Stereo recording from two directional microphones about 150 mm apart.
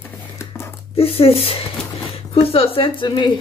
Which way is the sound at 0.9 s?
40° left (ahead or behind).